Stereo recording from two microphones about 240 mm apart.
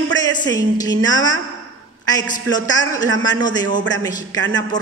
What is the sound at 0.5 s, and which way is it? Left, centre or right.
A man's voice, centre.